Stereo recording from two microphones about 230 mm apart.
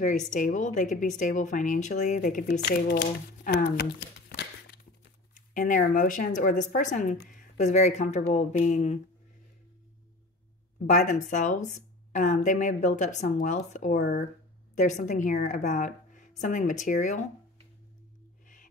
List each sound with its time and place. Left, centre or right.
0.0 s speech: left
2.6 s speech: left
4.3 s a sound: left
7.2 s speech: left
10.9 s speech: left